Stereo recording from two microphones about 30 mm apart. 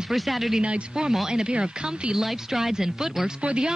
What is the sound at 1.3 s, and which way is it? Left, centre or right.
Speech, right.